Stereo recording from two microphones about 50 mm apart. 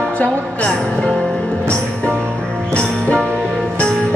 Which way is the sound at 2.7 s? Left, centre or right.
Left.